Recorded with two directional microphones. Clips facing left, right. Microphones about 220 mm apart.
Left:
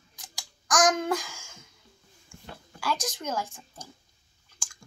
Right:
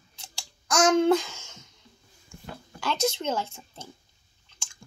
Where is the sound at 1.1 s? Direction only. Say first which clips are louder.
Right 7 dB; 10° left (ahead or behind).